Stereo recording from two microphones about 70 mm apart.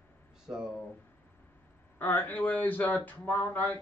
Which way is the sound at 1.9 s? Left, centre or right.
Left.